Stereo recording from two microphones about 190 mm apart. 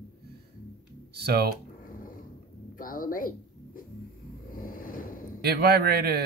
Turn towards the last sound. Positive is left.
turn(degrees=-55)  # may be behind; listen again after turning